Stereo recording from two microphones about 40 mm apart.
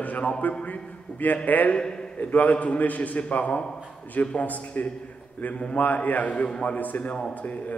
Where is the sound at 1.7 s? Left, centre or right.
Left.